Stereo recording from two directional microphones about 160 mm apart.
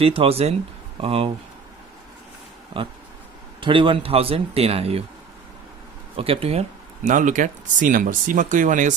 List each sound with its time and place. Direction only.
0.0 s speech: 35° right (ahead or behind)
3.6 s speech: 30° right (ahead or behind)
6.1 s speech: 35° right (ahead or behind)
7.0 s speech: 50° right (ahead or behind)